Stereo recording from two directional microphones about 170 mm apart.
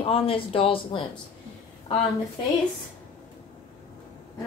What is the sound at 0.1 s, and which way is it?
Speech, 35° left (ahead or behind).